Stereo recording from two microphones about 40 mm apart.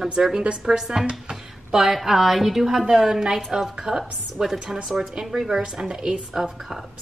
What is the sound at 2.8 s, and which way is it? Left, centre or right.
A woman's voice, centre.